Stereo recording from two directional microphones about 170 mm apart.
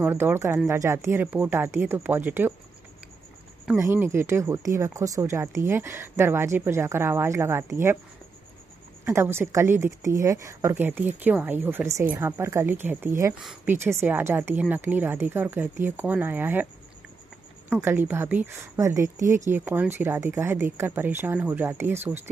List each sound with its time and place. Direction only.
0.0 s speech: 15° right (ahead or behind)
3.7 s speech: 15° right (ahead or behind)
9.0 s speech: 15° right (ahead or behind)
17.6 s speech: 10° right (ahead or behind)